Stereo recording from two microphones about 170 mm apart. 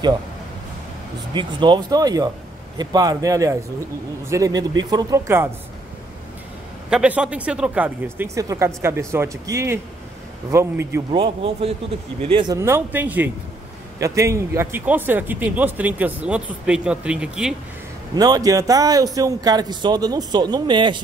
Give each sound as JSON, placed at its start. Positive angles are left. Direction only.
{"t": 1.3, "sound": "speech", "side_deg": -25}
{"t": 6.9, "sound": "a man's voice", "side_deg": -5}
{"t": 11.1, "sound": "speech", "side_deg": -35}
{"t": 12.5, "sound": "a man's voice", "side_deg": -15}
{"t": 18.1, "sound": "speech", "side_deg": -20}